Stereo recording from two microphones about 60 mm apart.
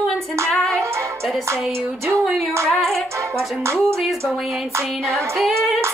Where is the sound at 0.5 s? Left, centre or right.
Centre.